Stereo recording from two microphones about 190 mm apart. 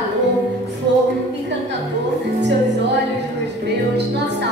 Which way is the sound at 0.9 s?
65° right (ahead or behind).